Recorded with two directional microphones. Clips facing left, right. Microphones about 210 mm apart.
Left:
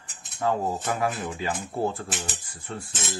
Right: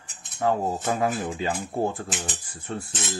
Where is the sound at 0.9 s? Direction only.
25° right (ahead or behind).